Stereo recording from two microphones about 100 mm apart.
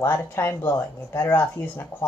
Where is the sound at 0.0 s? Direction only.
25° left (ahead or behind).